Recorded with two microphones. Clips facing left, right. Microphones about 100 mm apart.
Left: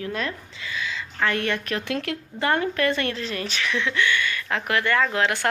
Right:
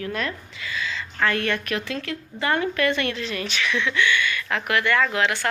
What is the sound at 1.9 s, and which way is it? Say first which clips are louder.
Speech: left 2 dB; 70° left (ahead or behind).